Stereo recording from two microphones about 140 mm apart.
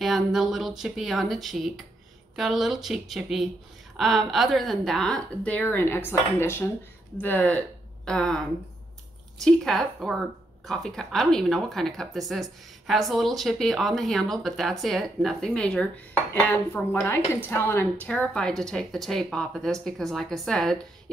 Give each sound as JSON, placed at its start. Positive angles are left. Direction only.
{"t": 0.0, "sound": "speech", "side_deg": 0}
{"t": 9.4, "sound": "a woman's voice", "side_deg": 5}